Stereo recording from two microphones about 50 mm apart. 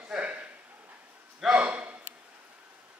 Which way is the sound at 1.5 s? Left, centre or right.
Right.